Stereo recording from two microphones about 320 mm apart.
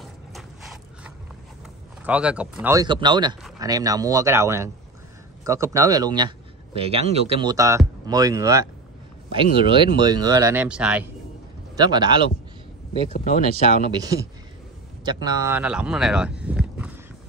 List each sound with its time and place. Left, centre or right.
0.0 s mechanisms: centre
2.0 s a man's voice: centre
13.1 s speech: left
15.2 s speech: centre